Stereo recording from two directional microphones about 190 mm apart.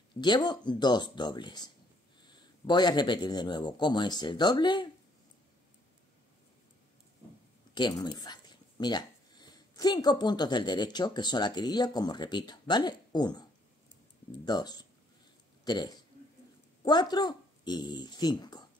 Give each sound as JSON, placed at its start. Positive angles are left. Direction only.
{"t": 0.2, "sound": "speech", "side_deg": 25}
{"t": 7.7, "sound": "a man's voice", "side_deg": 20}